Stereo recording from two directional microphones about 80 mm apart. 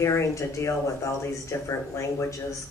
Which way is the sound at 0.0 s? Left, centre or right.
Left.